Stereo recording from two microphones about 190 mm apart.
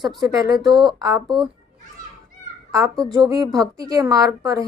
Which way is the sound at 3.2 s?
20° right (ahead or behind).